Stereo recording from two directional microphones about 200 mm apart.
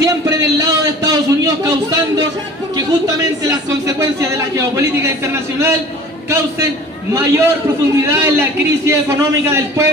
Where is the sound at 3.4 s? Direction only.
15° right (ahead or behind).